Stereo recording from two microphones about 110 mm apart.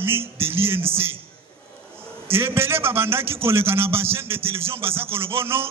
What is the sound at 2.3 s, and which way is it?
A man's voice, 20° right (ahead or behind).